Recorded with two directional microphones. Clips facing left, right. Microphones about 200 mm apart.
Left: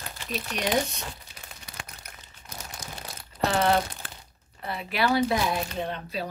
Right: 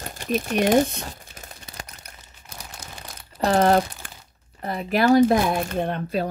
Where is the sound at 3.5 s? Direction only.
40° right (ahead or behind).